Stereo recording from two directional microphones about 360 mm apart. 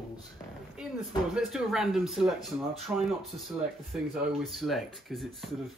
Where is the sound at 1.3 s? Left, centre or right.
Centre.